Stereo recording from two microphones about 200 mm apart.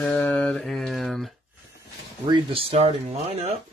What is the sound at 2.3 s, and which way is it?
Speech, 30° right (ahead or behind).